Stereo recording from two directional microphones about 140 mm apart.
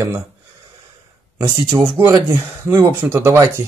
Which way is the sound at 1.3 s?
40° right (ahead or behind).